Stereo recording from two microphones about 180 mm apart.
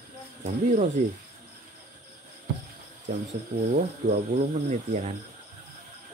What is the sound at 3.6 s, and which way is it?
Speech, 45° right (ahead or behind).